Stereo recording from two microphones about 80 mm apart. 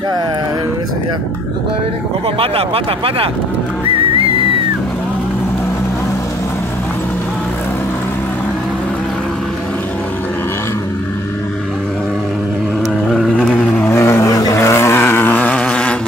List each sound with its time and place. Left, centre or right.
13.1 s vehicle: centre
13.8 s vehicle: left
14.6 s vehicle: left; by 16.0 s centre